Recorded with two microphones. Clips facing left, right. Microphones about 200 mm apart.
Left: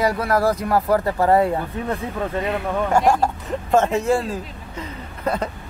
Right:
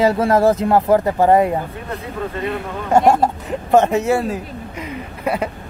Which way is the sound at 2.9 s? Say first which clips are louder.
Right 6 dB; 20° right (ahead or behind).